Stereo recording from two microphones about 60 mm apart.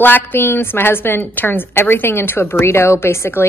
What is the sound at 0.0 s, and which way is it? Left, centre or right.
A woman's voice, left.